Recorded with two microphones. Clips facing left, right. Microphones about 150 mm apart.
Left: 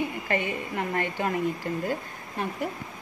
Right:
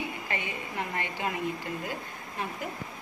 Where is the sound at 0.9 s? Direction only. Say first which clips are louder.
Left 5 dB; 50° left (ahead or behind).